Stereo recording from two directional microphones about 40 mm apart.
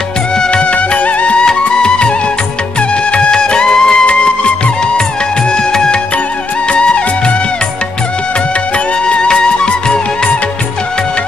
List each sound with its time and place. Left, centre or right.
0.4 s music: left
1.4 s music: centre
8.7 s music: left